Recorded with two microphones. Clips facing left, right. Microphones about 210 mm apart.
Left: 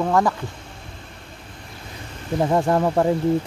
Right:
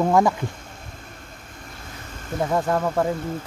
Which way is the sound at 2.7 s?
30° left (ahead or behind).